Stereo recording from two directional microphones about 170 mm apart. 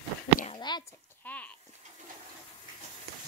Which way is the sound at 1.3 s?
10° left (ahead or behind).